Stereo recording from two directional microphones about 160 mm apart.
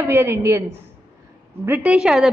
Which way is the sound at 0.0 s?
15° right (ahead or behind).